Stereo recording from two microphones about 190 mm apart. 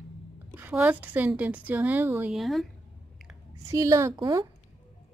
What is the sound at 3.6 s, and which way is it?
Speech, 15° right (ahead or behind).